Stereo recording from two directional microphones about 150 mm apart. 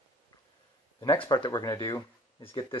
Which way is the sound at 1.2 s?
30° left (ahead or behind).